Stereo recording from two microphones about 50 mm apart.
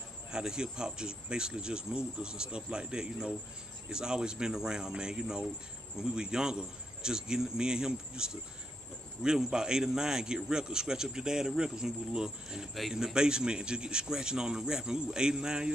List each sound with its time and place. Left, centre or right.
0.3 s a man's voice: centre